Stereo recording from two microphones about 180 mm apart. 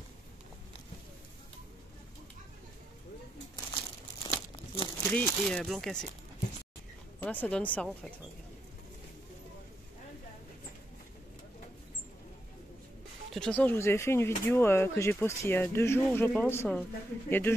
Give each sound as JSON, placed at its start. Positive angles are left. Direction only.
{"t": 3.5, "sound": "crumpling", "side_deg": 20}
{"t": 5.0, "sound": "speech", "side_deg": 10}
{"t": 7.2, "sound": "speech", "side_deg": 10}
{"t": 13.3, "sound": "speech", "side_deg": 5}